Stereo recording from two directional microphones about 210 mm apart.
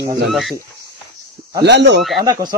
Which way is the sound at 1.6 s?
55° right (ahead or behind).